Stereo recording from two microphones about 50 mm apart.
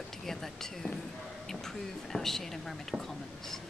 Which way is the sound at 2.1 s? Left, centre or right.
Centre.